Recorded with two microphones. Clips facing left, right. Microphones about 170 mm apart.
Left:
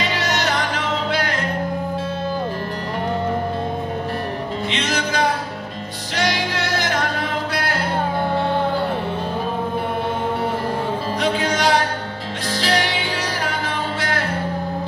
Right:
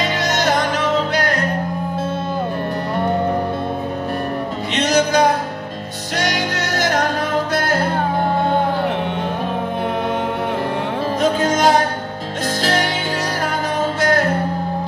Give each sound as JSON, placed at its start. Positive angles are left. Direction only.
{"t": 0.0, "sound": "music", "side_deg": -45}
{"t": 4.7, "sound": "music", "side_deg": -45}
{"t": 11.1, "sound": "music", "side_deg": -45}
{"t": 14.0, "sound": "music", "side_deg": -45}